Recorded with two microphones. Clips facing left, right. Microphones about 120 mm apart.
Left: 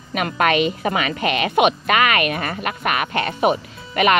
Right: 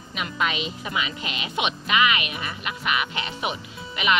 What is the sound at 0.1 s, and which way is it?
A woman's voice, 55° left (ahead or behind).